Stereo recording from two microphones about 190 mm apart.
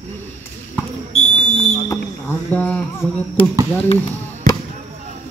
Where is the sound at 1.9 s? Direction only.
10° left (ahead or behind).